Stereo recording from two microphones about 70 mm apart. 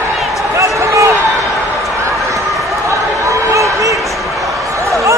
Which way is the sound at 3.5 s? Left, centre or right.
Right.